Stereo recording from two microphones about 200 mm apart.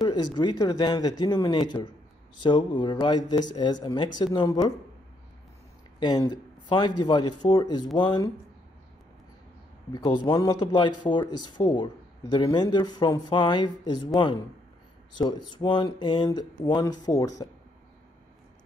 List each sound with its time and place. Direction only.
0.0 s speech: 20° left (ahead or behind)
5.9 s speech: 20° left (ahead or behind)
9.9 s speech: 20° left (ahead or behind)